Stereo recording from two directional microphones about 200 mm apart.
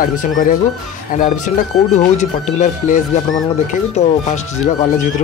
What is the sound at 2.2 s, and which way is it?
Speech, 35° left (ahead or behind).